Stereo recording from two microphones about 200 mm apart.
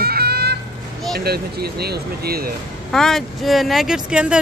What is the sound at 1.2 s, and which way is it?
Speech, 50° right (ahead or behind).